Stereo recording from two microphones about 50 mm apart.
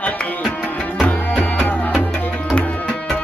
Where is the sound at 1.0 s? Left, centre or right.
Left.